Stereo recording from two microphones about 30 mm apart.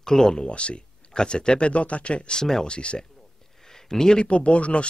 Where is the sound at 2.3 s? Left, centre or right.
Centre.